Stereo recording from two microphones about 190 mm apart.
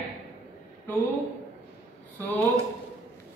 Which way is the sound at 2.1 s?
10° left (ahead or behind).